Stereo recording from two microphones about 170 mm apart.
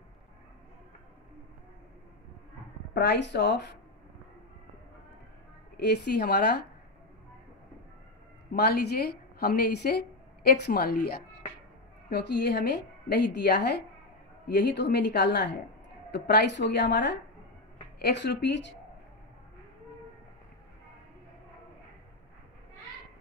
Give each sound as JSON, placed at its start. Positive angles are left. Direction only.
{"t": 2.9, "sound": "speech", "side_deg": 80}
{"t": 5.8, "sound": "a woman's voice", "side_deg": 75}
{"t": 8.5, "sound": "a woman's voice", "side_deg": 70}
{"t": 12.1, "sound": "a woman's voice", "side_deg": 75}